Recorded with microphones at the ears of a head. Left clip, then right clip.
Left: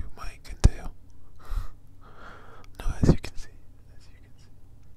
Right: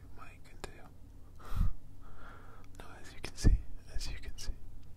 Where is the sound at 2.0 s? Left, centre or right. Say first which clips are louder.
Left 8 dB; left.